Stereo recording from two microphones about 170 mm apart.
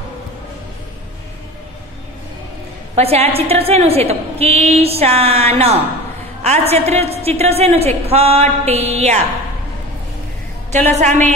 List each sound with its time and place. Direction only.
3.0 s a woman's voice: 35° right (ahead or behind)
10.7 s a woman's voice: 40° right (ahead or behind)